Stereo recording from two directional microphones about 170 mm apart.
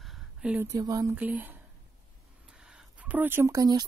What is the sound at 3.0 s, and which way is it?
Speech, 10° right (ahead or behind).